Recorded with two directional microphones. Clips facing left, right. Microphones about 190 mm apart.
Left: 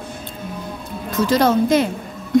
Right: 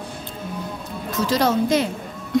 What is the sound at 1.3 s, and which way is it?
Speech, 55° left (ahead or behind).